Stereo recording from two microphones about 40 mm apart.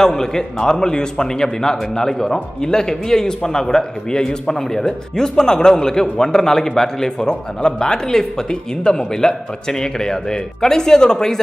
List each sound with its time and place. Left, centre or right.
0.0 s a man's voice: centre